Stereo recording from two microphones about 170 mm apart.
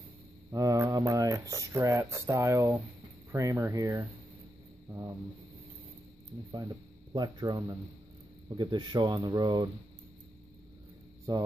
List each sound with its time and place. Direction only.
0.5 s speech: 20° right (ahead or behind)
4.8 s a sound: 20° right (ahead or behind)
7.2 s speech: 25° right (ahead or behind)
11.3 s speech: 20° right (ahead or behind)